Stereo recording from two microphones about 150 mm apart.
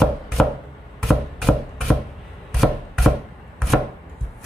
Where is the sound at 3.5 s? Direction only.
Centre (ahead or behind).